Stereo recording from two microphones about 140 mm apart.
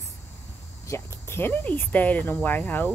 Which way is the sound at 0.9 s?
20° left (ahead or behind).